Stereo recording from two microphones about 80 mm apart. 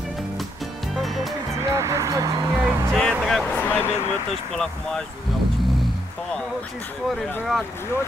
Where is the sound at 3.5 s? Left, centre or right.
Left.